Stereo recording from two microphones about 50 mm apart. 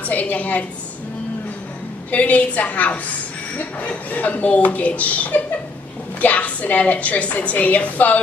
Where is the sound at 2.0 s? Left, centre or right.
Left.